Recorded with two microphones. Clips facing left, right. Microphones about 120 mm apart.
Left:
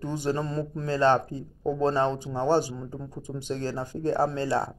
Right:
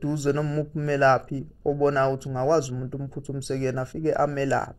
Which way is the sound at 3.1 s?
40° left (ahead or behind).